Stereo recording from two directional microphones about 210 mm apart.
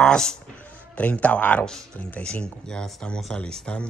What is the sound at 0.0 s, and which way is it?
Speech, 5° left (ahead or behind).